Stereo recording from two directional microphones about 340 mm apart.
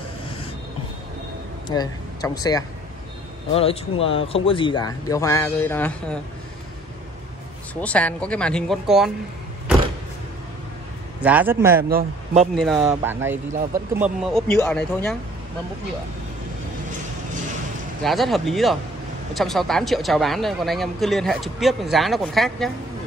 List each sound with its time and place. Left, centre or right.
1.7 s speech: centre
7.8 s speech: centre
11.1 s speech: centre
11.9 s a man's voice: right
12.5 s speech: centre
18.0 s speech: centre